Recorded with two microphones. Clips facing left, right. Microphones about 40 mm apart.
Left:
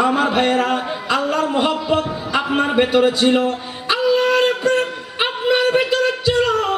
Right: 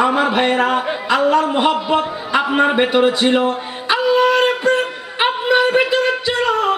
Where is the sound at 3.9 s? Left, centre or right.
Centre.